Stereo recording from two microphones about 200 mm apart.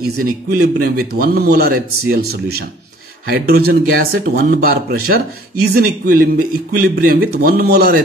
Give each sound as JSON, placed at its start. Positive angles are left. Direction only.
{"t": 0.0, "sound": "a man's voice", "side_deg": -50}